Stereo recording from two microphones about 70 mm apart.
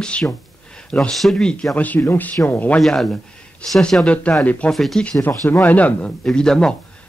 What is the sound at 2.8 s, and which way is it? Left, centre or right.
Speech, centre.